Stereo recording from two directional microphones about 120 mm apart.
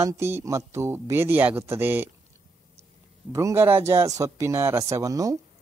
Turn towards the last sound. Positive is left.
turn(degrees=-30)  # may be behind; listen again after turning